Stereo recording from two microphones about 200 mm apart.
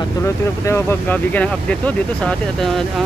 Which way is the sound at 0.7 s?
10° left (ahead or behind).